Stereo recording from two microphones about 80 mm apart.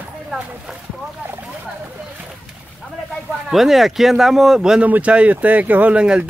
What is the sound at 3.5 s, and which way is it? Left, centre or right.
Speech, centre.